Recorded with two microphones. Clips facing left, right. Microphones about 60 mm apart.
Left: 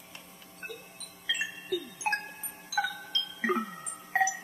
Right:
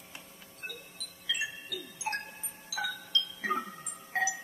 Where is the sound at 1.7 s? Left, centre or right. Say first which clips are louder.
Left 5 dB; left.